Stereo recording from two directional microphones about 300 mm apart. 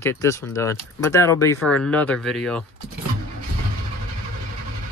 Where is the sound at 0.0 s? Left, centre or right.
Centre.